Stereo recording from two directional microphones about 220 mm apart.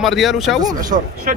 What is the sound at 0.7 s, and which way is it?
Speech, 35° right (ahead or behind).